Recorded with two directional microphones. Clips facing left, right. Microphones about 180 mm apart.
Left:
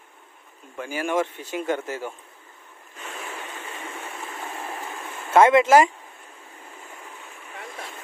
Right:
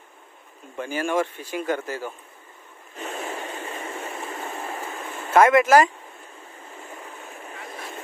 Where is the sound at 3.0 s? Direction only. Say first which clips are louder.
Right 5 dB; 35° right (ahead or behind).